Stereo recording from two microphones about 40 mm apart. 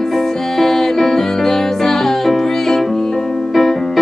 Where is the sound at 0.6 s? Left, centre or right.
Centre.